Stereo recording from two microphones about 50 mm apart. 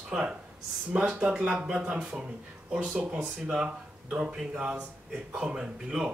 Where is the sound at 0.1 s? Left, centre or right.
Centre.